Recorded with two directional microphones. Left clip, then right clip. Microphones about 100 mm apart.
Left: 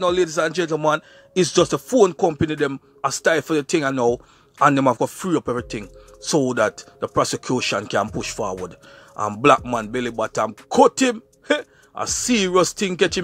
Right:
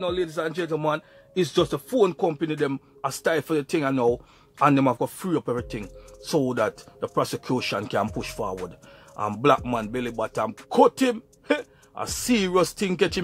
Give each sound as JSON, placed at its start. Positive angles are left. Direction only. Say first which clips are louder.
{"t": 0.0, "sound": "a man's voice", "louder": "left 7 dB", "side_deg": 35}
{"t": 6.5, "sound": "a man's voice", "louder": "left 5 dB", "side_deg": 15}
{"t": 12.1, "sound": "speech", "louder": "left 4 dB", "side_deg": 10}